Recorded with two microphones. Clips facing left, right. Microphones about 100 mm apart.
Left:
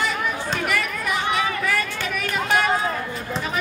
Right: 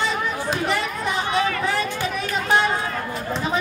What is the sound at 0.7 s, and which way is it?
Chatter, 25° right (ahead or behind).